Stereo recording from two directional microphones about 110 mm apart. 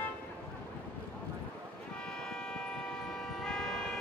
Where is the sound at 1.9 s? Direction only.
5° left (ahead or behind).